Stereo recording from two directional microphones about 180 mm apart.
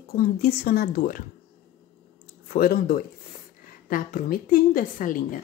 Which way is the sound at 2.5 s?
55° left (ahead or behind).